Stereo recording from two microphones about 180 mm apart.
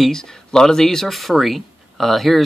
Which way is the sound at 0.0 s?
5° left (ahead or behind).